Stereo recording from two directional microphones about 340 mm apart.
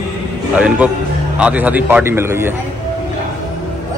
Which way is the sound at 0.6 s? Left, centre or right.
Centre.